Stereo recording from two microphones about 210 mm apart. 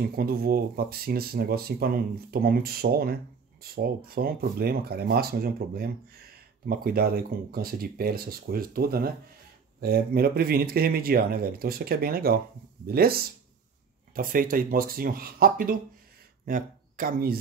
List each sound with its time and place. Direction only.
0.1 s speech: 45° right (ahead or behind)